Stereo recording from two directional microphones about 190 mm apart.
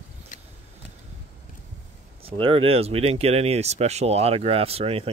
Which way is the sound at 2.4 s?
30° right (ahead or behind).